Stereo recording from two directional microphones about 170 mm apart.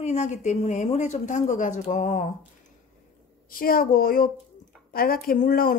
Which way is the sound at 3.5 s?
60° left (ahead or behind).